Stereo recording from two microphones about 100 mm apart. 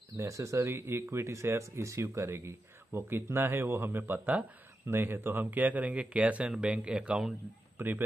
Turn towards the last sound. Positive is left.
turn(degrees=-20)  # may be behind; listen again after turning